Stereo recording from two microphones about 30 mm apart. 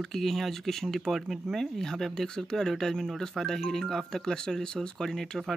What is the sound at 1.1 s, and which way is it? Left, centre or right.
Speech, centre.